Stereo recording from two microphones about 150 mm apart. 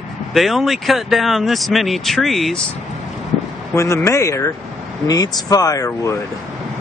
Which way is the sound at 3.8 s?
20° left (ahead or behind).